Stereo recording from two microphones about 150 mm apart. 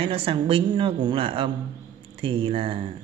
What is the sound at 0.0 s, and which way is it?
Speech, 35° right (ahead or behind).